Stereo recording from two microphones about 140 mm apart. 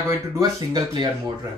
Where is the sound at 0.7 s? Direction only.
30° right (ahead or behind).